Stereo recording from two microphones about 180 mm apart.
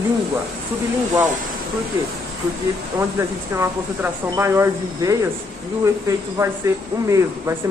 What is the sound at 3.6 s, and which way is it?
Speech, 15° right (ahead or behind).